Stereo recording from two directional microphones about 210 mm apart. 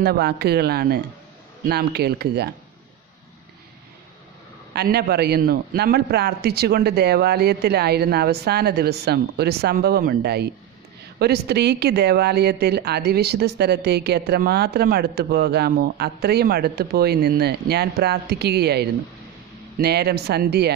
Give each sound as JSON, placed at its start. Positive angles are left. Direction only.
{"t": 0.0, "sound": "a woman's voice", "side_deg": -50}
{"t": 4.7, "sound": "a woman's voice", "side_deg": -50}